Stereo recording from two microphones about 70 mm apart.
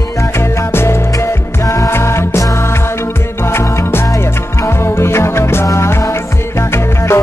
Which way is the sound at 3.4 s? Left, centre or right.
Left.